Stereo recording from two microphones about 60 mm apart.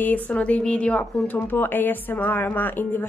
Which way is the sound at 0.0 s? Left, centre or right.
Left.